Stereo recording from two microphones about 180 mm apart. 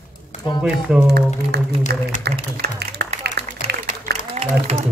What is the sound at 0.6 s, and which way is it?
Speech, 5° right (ahead or behind).